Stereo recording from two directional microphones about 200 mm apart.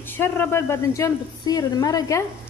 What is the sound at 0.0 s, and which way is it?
A woman's voice, 10° left (ahead or behind).